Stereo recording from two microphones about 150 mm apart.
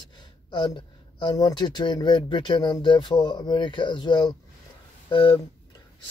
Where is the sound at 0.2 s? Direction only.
30° left (ahead or behind).